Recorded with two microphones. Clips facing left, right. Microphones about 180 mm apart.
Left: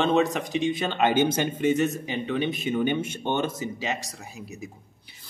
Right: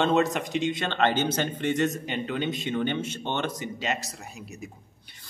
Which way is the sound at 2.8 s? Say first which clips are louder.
Left 3 dB; 15° left (ahead or behind).